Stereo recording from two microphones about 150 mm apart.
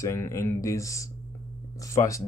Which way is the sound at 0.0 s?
20° left (ahead or behind).